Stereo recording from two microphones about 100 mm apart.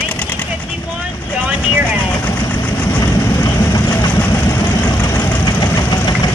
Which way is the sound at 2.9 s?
35° left (ahead or behind).